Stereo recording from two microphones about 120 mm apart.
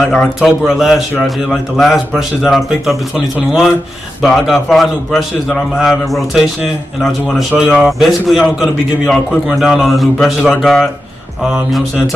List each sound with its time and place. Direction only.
0.1 s a man's voice: centre (ahead or behind)
4.2 s a man's voice: centre (ahead or behind)